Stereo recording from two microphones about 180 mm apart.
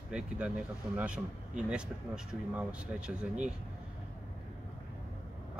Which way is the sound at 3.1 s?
5° right (ahead or behind).